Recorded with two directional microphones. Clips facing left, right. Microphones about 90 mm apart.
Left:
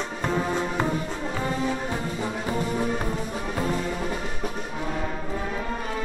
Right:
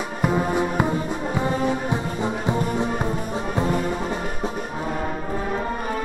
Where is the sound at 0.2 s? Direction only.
15° right (ahead or behind).